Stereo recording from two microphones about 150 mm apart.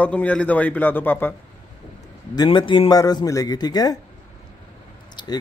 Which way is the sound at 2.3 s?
30° left (ahead or behind).